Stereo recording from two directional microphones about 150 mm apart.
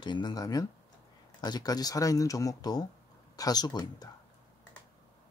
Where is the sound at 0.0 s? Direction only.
30° left (ahead or behind).